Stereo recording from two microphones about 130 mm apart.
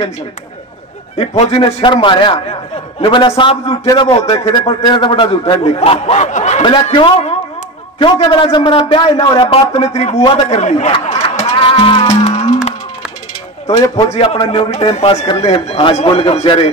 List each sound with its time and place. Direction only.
1.1 s a man's voice: 50° left (ahead or behind)
3.8 s a man's voice: 30° left (ahead or behind)
4.1 s a man's voice: 45° left (ahead or behind)
6.6 s a man's voice: 40° left (ahead or behind)
9.5 s a man's voice: 55° left (ahead or behind)
10.9 s music: 45° left (ahead or behind)
14.1 s a man's voice: 50° left (ahead or behind)